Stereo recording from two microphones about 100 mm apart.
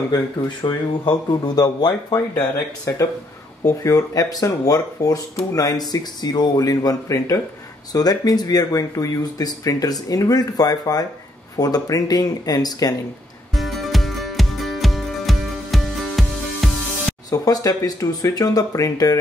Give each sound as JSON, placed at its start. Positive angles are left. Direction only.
{"t": 0.1, "sound": "speech", "side_deg": 45}
{"t": 3.6, "sound": "speech", "side_deg": 35}
{"t": 13.6, "sound": "music", "side_deg": 0}
{"t": 17.3, "sound": "speech", "side_deg": 40}